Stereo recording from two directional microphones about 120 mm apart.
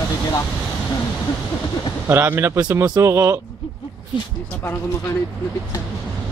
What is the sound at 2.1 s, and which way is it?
Speech, 20° right (ahead or behind).